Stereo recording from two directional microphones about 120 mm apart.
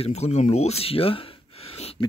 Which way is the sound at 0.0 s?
65° left (ahead or behind).